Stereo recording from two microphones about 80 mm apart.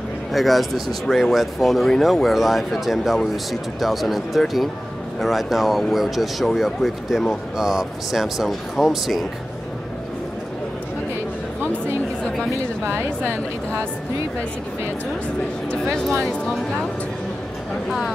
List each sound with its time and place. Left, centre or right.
0.3 s speech: centre
15.7 s speech: centre